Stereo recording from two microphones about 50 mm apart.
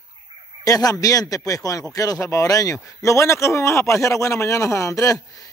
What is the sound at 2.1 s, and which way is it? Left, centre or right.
Speech, left.